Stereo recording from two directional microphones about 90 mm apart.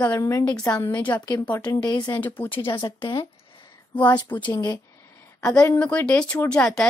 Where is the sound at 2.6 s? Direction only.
65° left (ahead or behind).